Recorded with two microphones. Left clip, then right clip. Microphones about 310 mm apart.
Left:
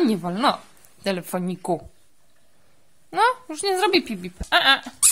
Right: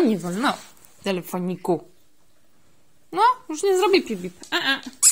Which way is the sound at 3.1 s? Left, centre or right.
Centre.